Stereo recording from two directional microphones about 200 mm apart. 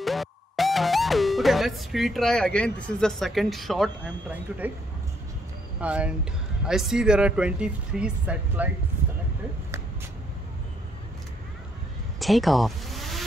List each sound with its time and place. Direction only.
0.0 s speech: centre (ahead or behind)
5.8 s speech: 5° right (ahead or behind)
12.2 s vehicle: centre (ahead or behind)